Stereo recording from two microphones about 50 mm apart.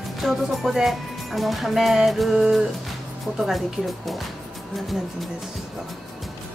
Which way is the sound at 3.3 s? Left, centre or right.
Centre.